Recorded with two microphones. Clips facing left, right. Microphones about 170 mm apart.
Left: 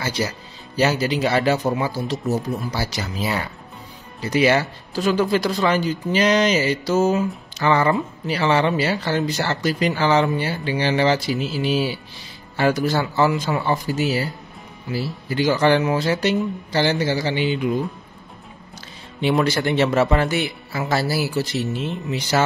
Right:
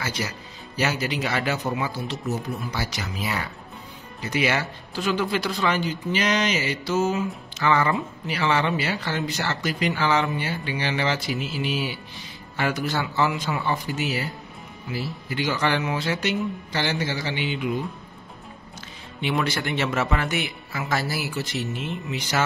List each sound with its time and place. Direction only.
0.0 s speech: 30° left (ahead or behind)
19.2 s speech: 40° left (ahead or behind)